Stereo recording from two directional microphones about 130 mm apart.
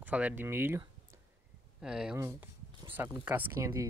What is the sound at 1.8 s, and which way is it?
Speech, 5° right (ahead or behind).